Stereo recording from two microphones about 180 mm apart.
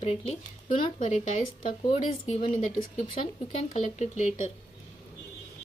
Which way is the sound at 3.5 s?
40° left (ahead or behind).